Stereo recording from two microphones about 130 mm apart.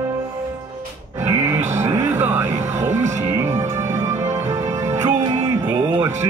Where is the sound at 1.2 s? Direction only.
20° right (ahead or behind).